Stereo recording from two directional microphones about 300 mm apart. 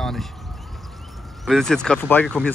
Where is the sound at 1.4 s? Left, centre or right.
Centre.